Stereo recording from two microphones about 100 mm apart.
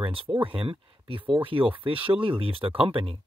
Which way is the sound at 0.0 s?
60° right (ahead or behind).